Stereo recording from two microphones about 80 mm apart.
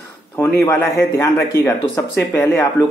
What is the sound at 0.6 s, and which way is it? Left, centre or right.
Speech, left.